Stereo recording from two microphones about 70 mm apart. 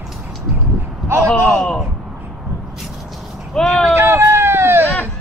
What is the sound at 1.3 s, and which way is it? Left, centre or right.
Speech, centre.